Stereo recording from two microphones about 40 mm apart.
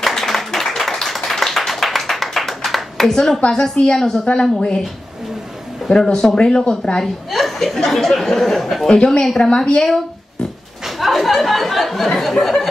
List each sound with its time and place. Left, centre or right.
0.0 s clapping: centre
3.4 s a woman's voice: centre
4.3 s speech: left
5.9 s speech: centre
7.2 s speech: centre
8.9 s a woman's voice: left
11.0 s a sound: centre
12.3 s speech: centre